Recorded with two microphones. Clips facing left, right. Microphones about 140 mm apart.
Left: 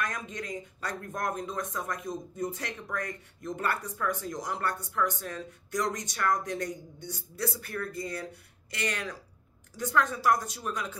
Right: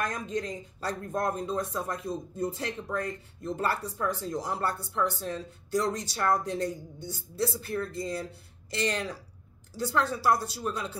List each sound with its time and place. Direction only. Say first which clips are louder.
0.0 s speech: right 4 dB; 35° right (ahead or behind)